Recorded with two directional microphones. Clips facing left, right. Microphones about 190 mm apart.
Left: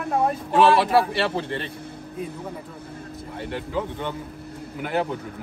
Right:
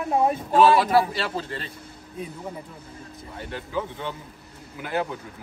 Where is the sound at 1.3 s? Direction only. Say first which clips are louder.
Left 4 dB; 25° left (ahead or behind).